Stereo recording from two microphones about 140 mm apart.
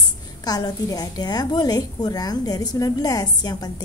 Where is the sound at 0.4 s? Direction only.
30° left (ahead or behind).